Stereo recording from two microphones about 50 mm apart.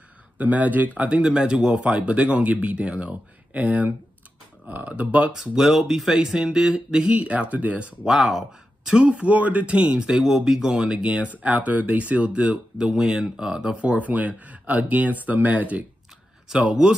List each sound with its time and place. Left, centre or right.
0.4 s speech: right
1.0 s speech: right
5.3 s speech: centre
6.1 s speech: centre
7.1 s speech: right
8.0 s speech: centre
9.0 s speech: right
16.4 s speech: centre